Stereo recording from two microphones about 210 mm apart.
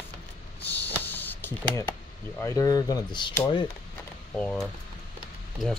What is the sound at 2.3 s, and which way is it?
Speech, 15° left (ahead or behind).